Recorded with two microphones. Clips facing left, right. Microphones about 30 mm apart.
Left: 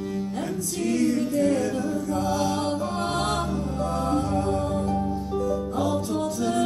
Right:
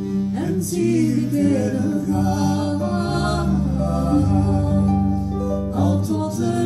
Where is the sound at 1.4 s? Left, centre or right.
Left.